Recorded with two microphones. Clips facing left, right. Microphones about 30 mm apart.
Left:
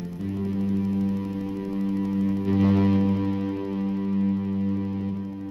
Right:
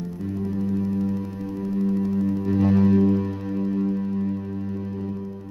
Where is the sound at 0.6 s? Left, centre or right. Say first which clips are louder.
Right 1 dB; centre.